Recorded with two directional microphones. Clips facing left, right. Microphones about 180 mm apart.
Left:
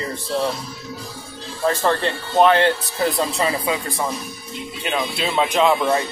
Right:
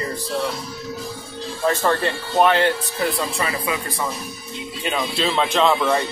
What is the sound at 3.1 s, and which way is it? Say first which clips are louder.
Speech: left 3 dB; 35° left (ahead or behind).